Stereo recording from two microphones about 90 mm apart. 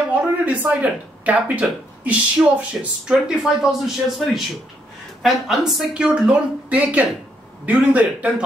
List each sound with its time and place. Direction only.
0.1 s a woman's voice: 15° right (ahead or behind)